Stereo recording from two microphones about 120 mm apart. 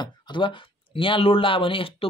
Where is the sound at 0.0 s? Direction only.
40° left (ahead or behind).